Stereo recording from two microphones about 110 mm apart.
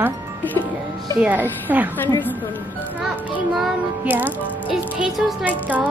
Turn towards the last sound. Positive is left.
turn(degrees=-15)  # may be behind; listen again after turning